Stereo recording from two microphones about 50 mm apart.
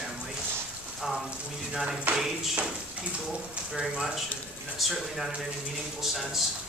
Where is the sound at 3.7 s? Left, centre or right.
Centre.